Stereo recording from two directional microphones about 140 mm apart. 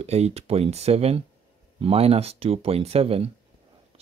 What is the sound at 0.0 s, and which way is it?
Speech, 50° right (ahead or behind).